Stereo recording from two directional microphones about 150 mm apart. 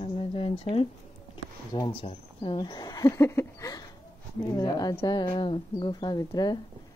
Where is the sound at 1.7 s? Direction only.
30° left (ahead or behind).